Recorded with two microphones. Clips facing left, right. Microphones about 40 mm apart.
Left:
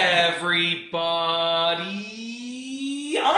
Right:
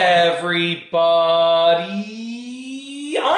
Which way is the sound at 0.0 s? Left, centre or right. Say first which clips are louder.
Right 5 dB; centre.